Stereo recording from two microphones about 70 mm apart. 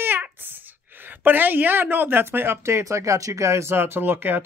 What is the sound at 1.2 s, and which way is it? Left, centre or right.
Speech, right.